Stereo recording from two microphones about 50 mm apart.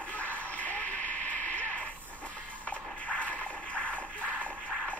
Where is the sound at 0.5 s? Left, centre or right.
Left.